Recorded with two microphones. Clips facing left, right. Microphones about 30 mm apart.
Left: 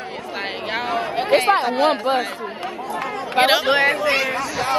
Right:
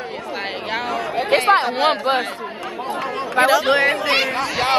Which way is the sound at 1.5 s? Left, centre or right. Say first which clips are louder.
Right 1 dB; right.